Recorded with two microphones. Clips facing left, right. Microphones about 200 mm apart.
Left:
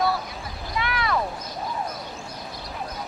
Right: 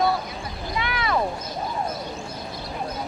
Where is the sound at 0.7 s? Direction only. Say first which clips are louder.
Even; centre (ahead or behind).